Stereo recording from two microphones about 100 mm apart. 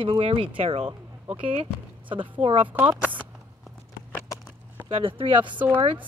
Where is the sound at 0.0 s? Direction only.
65° right (ahead or behind).